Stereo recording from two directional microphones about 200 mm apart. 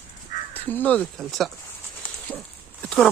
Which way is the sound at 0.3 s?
45° left (ahead or behind).